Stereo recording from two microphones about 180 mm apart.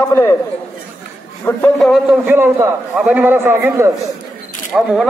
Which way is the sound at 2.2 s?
10° right (ahead or behind).